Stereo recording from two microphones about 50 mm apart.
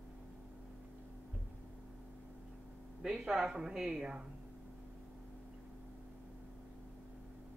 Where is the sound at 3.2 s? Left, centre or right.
Centre.